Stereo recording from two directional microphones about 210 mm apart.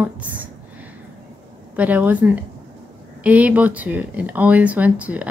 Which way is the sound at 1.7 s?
5° right (ahead or behind).